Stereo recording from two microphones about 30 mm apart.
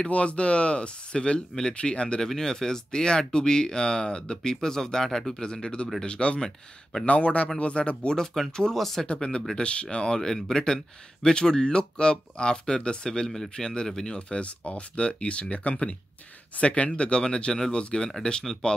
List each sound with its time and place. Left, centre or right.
0.0 s speech: left
2.3 s speech: centre
5.4 s speech: left
7.1 s speech: left
8.4 s speech: centre
9.0 s speech: left; by 14.1 s centre
14.1 s speech: left
17.2 s speech: left